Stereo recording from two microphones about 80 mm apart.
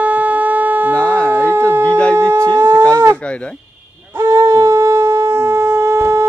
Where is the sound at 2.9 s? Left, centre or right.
Right.